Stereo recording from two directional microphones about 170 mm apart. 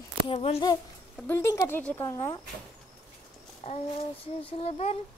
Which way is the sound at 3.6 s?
40° left (ahead or behind).